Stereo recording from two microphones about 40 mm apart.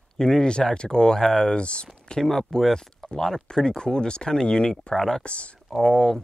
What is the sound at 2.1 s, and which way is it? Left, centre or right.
Speech, centre.